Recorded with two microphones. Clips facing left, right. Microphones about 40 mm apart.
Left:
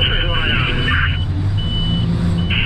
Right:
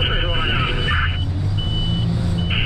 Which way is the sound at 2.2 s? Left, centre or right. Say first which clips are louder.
Left 3 dB; centre.